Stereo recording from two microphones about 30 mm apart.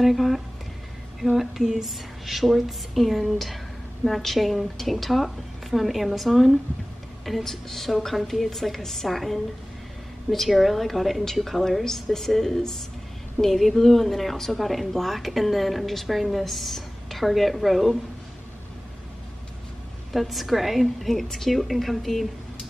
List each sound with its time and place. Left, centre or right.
0.0 s speech: centre
1.3 s a sound: centre
1.9 s a woman's voice: centre
20.1 s a woman's voice: centre